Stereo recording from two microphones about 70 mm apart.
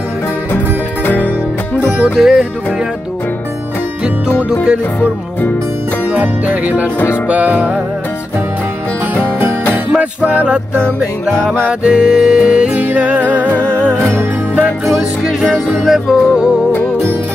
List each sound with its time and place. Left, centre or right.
1.0 s music: left
2.0 s music: centre
4.4 s music: centre
9.1 s music: right
9.9 s music: centre
11.8 s music: centre
13.5 s music: left
14.9 s music: centre